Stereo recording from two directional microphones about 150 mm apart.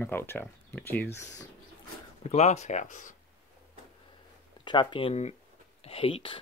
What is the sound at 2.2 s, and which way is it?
Speech, 50° left (ahead or behind).